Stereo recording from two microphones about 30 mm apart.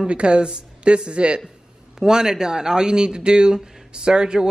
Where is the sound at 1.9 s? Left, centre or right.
Centre.